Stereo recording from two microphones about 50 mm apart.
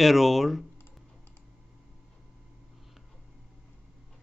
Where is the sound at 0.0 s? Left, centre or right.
Centre.